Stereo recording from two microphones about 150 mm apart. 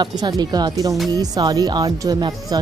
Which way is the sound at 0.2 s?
25° right (ahead or behind).